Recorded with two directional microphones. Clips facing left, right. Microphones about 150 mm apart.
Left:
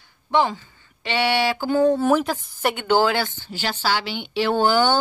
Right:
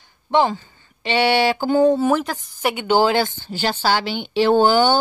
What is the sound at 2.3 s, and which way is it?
Speech, 5° right (ahead or behind).